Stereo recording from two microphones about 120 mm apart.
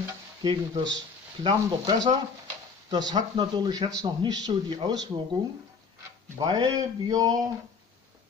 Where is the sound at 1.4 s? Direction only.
40° right (ahead or behind).